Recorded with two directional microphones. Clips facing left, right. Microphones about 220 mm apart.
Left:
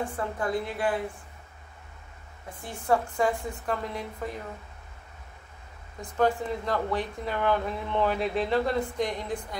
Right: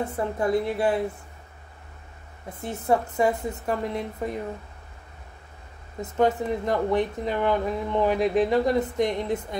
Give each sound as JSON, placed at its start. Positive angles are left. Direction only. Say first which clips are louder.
{"t": 0.0, "sound": "speech", "louder": "right 4 dB", "side_deg": -25}
{"t": 2.6, "sound": "speech", "louder": "right 3 dB", "side_deg": -20}
{"t": 5.9, "sound": "speech", "louder": "right 3 dB", "side_deg": -20}